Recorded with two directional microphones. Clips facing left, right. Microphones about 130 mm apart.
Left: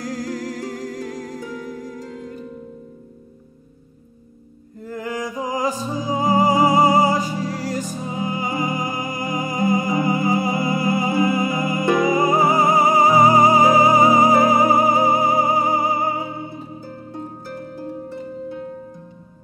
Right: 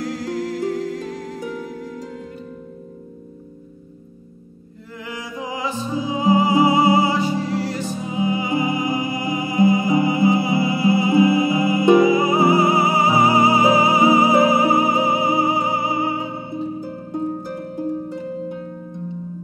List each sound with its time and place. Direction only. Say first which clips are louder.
0.0 s music: right 2 dB; 40° left (ahead or behind)
4.9 s music: left 5 dB; 45° left (ahead or behind)
11.8 s music: right 6 dB; 10° right (ahead or behind)
12.1 s music: right 1 dB; 45° left (ahead or behind)
17.1 s harp: right 8 dB; 20° right (ahead or behind)